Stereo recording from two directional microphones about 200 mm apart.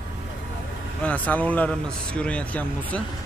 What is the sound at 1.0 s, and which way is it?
A man's voice, 10° left (ahead or behind).